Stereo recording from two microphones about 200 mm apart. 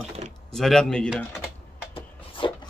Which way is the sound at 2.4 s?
25° left (ahead or behind).